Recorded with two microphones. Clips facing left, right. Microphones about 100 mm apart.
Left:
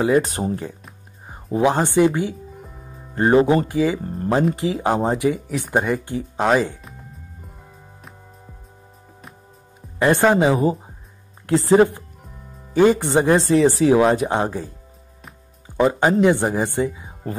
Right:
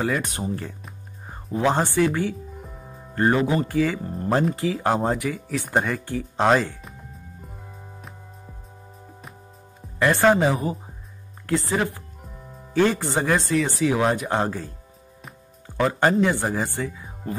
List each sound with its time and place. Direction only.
0.2 s speech: 35° left (ahead or behind)
0.8 s music: 5° left (ahead or behind)
1.5 s speech: 15° left (ahead or behind)
2.5 s music: centre (ahead or behind)
3.2 s speech: 25° left (ahead or behind)
3.6 s speech: 15° left (ahead or behind)
4.6 s speech: 20° left (ahead or behind)
9.9 s speech: 20° left (ahead or behind)
12.2 s music: centre (ahead or behind)
12.7 s speech: 15° left (ahead or behind)
14.4 s speech: 15° left (ahead or behind)
15.8 s speech: 15° left (ahead or behind)